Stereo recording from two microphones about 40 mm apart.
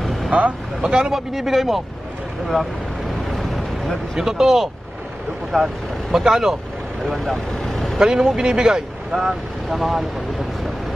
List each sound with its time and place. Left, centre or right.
0.0 s vehicle: centre
0.3 s speech: right
0.8 s speech: right
1.1 s speech: centre
3.3 s vehicle: centre
4.1 s speech: centre
5.5 s speech: centre
6.1 s speech: centre
7.1 s speech: centre
8.0 s speech: centre